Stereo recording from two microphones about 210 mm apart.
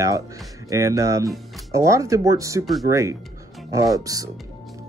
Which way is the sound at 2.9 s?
15° right (ahead or behind).